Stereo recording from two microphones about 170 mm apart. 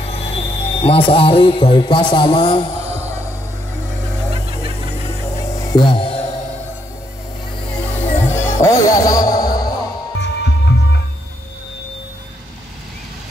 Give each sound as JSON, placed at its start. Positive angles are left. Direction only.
{"t": 0.0, "sound": "speech", "side_deg": 40}
{"t": 5.2, "sound": "music", "side_deg": 15}
{"t": 7.7, "sound": "music", "side_deg": 10}
{"t": 10.2, "sound": "music", "side_deg": 90}